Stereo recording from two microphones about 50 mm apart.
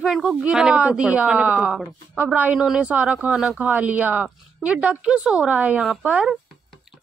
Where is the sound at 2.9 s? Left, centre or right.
Right.